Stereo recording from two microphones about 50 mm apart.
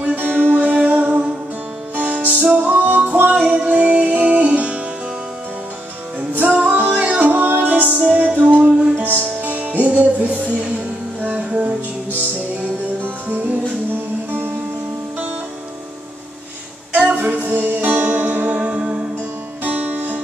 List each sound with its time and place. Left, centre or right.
0.1 s music: right
0.6 s music: right
6.3 s music: right
7.2 s music: right
16.9 s music: right
19.6 s music: right